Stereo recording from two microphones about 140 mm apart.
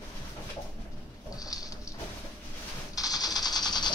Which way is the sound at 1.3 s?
25° left (ahead or behind).